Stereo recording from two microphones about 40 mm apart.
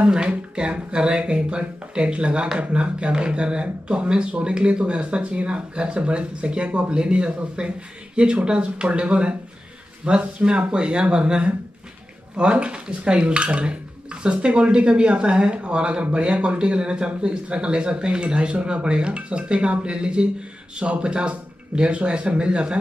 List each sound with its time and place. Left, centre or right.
0.0 s speech: right